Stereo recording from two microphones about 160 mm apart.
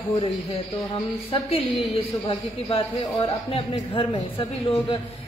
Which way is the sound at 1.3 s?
35° left (ahead or behind).